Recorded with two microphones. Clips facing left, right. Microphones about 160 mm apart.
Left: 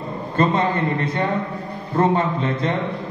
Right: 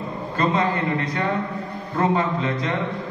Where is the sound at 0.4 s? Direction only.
30° left (ahead or behind).